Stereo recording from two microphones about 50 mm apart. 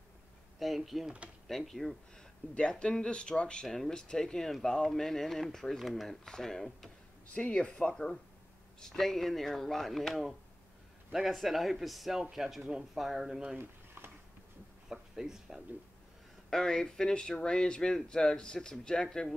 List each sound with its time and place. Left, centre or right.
0.6 s speech: centre
2.5 s speech: centre
3.6 s speech: centre
7.3 s speech: left; by 13.6 s centre
14.9 s speech: centre
16.4 s speech: centre